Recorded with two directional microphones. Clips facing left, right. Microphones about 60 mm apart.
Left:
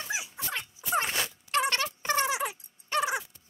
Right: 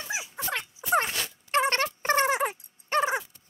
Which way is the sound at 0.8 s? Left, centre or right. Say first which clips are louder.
Right 4 dB; centre.